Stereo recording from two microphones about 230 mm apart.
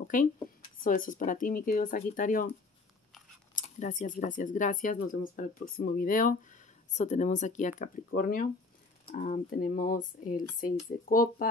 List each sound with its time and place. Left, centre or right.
0.0 s a woman's voice: left
3.5 s speech: left